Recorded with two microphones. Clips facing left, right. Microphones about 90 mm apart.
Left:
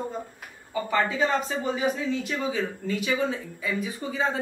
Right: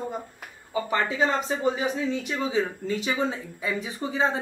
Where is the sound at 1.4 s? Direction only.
25° right (ahead or behind).